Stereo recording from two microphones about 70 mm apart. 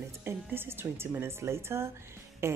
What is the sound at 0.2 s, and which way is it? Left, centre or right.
A woman's voice, right.